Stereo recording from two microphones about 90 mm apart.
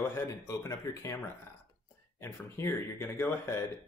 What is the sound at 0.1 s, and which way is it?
Speech, 35° left (ahead or behind).